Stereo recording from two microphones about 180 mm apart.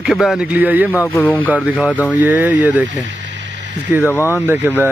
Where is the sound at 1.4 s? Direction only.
5° right (ahead or behind).